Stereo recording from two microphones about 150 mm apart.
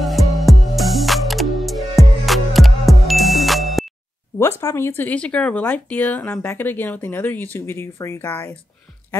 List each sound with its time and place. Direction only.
0.0 s music: centre (ahead or behind)
4.4 s speech: 20° left (ahead or behind)